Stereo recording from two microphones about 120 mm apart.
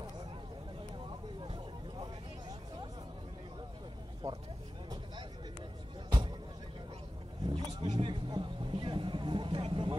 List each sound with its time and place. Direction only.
4.2 s speech: 30° right (ahead or behind)
7.5 s vehicle: 40° right (ahead or behind)